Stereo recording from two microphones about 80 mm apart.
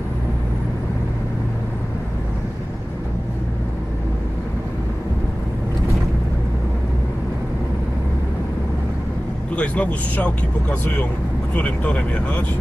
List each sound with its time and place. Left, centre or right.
9.6 s speech: centre